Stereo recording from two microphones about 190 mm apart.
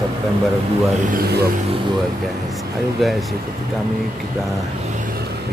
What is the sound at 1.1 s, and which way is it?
Speech, 55° right (ahead or behind).